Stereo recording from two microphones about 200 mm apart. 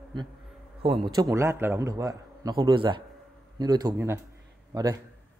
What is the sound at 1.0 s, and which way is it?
A man's voice, 20° right (ahead or behind).